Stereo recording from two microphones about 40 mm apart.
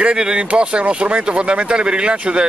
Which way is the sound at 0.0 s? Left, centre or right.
Right.